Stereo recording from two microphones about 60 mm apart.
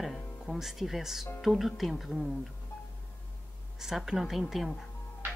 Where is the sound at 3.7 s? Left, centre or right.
Centre.